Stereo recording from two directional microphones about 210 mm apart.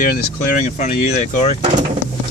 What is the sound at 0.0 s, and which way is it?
Speech, 40° left (ahead or behind).